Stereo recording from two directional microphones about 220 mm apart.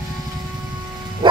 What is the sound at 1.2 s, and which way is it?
Bow-wow, 20° right (ahead or behind).